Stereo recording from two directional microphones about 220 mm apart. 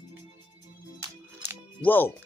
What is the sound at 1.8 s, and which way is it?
Speech, 10° left (ahead or behind).